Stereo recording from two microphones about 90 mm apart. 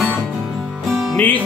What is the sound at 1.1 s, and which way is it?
Music, 20° left (ahead or behind).